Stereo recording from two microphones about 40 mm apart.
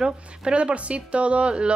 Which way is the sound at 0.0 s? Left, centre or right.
Right.